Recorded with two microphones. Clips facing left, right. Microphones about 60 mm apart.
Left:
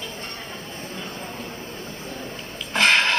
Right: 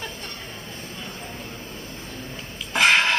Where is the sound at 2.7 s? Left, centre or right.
Centre.